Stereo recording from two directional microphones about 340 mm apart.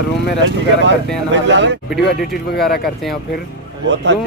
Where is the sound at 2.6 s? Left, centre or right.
Left.